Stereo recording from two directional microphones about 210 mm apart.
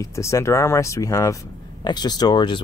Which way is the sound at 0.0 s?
15° left (ahead or behind).